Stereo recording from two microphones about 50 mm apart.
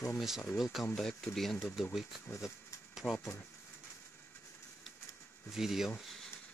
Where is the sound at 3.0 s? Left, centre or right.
Centre.